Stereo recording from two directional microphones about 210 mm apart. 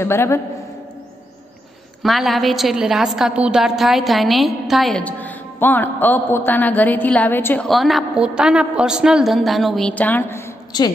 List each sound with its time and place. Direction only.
0.0 s a man's voice: 10° left (ahead or behind)
2.0 s a woman's voice: centre (ahead or behind)
10.7 s a woman's voice: 20° left (ahead or behind)